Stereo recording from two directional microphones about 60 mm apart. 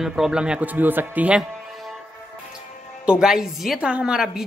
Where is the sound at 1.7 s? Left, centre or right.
Centre.